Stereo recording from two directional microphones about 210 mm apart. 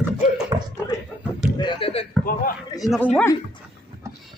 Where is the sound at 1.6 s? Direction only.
25° left (ahead or behind).